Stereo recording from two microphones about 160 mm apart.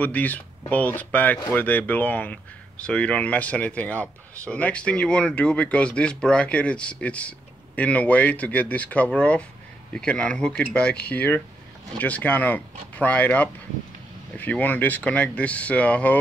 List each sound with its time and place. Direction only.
0.0 s speech: 10° left (ahead or behind)